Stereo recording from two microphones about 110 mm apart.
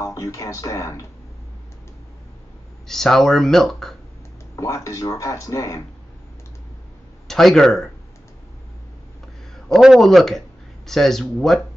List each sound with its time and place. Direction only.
0.0 s speech: 30° left (ahead or behind)
2.9 s speech: 5° left (ahead or behind)
4.6 s speech: 30° left (ahead or behind)
7.2 s speech: 5° left (ahead or behind)
9.7 s speech: centre (ahead or behind)